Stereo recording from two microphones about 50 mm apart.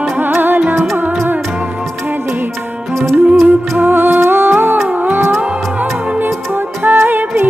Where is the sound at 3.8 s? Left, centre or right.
Right.